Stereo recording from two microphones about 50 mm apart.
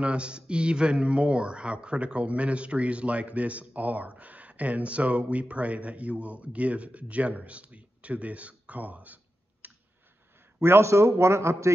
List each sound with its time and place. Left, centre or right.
0.0 s speech: right
10.6 s a man's voice: right